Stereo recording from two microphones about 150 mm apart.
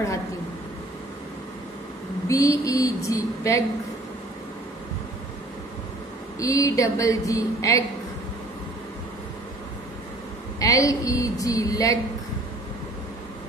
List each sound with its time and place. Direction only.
2.2 s speech: 20° left (ahead or behind)
6.4 s speech: 20° left (ahead or behind)
10.6 s speech: 20° left (ahead or behind)